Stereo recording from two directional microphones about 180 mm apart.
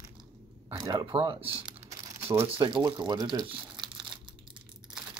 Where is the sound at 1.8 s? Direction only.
15° right (ahead or behind).